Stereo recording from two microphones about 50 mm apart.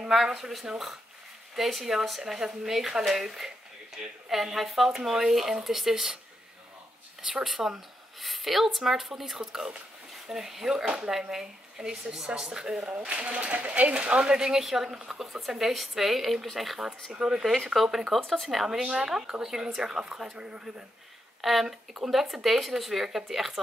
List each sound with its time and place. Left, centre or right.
0.1 s speech: centre
7.2 s speech: centre
12.8 s speech: right; by 16.9 s centre
17.1 s speech: centre
17.4 s speech: centre
18.2 s speech: centre
18.8 s speech: centre
21.4 s speech: centre